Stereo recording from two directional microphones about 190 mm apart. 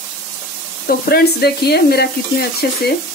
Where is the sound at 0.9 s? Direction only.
55° left (ahead or behind).